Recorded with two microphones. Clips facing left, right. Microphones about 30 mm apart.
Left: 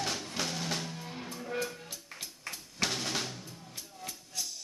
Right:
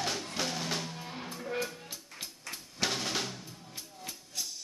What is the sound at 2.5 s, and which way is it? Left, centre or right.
Drum, centre.